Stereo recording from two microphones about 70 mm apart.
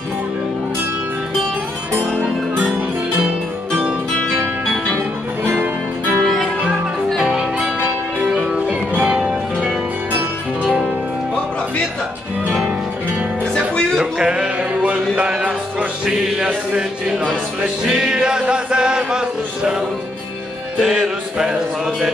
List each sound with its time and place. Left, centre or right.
2.1 s music: right
6.2 s music: centre
7.2 s music: centre
13.7 s music: centre
14.1 s music: centre
20.8 s music: centre